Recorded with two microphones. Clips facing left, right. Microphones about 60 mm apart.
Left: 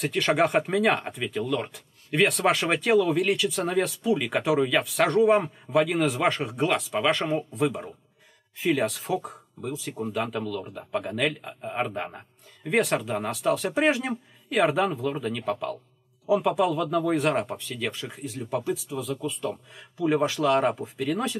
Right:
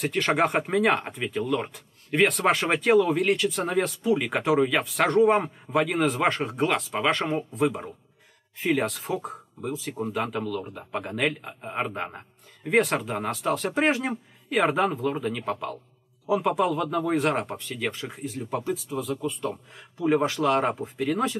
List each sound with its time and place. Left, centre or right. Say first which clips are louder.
0.0 s speech: even; centre
10.2 s a man's voice: right 1 dB; centre
16.8 s a man's voice: left 1 dB; centre
17.1 s speech: even; centre